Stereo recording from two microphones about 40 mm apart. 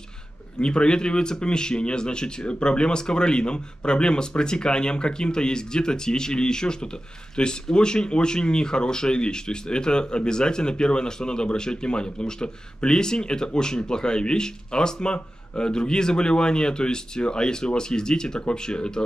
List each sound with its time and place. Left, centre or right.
0.6 s speech: left